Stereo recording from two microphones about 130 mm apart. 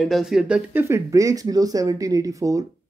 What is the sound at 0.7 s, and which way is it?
Speech, 20° right (ahead or behind).